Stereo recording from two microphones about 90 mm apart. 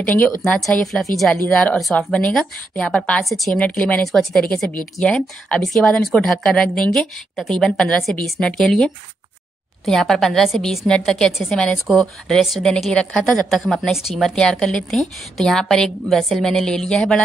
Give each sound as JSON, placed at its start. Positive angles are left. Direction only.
{"t": 0.0, "sound": "a woman's voice", "side_deg": 20}
{"t": 0.7, "sound": "a woman's voice", "side_deg": 5}
{"t": 1.3, "sound": "speech", "side_deg": 15}
{"t": 3.3, "sound": "a woman's voice", "side_deg": 0}
{"t": 3.5, "sound": "a woman's voice", "side_deg": 15}